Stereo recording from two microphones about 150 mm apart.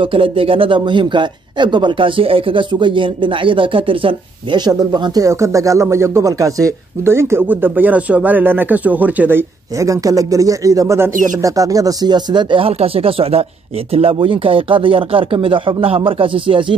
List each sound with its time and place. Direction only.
0.0 s speech: 35° right (ahead or behind); by 9.4 s 10° right (ahead or behind)
9.8 s speech: 20° right (ahead or behind)